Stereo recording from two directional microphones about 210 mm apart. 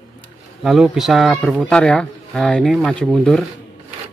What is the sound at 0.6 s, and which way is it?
Speech, centre (ahead or behind).